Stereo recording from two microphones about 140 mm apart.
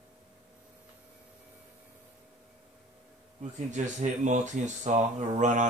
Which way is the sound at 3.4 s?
55° right (ahead or behind).